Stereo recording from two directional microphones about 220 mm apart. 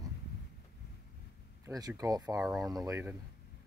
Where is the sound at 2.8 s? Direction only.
10° right (ahead or behind).